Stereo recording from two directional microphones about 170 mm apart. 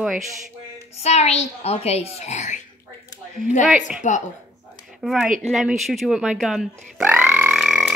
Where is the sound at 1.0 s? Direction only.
40° left (ahead or behind).